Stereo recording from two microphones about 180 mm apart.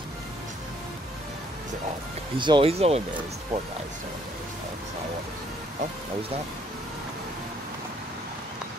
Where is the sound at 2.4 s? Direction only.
30° right (ahead or behind).